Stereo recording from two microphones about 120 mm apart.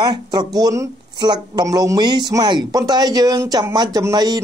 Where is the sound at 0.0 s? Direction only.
35° right (ahead or behind).